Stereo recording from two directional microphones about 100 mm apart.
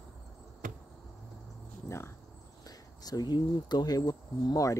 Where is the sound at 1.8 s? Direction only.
25° left (ahead or behind).